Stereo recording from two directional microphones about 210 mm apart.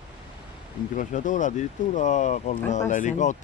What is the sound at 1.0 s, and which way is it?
Speech, 35° left (ahead or behind).